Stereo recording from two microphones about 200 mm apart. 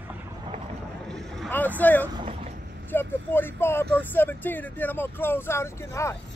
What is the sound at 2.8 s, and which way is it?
Speech, 10° left (ahead or behind).